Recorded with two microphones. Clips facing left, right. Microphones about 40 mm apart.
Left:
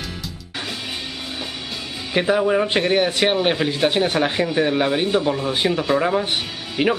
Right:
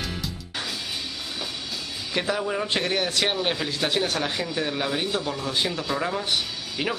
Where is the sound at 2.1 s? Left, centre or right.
Left.